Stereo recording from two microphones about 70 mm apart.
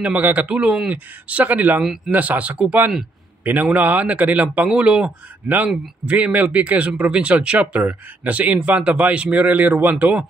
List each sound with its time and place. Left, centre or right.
0.0 s speech: right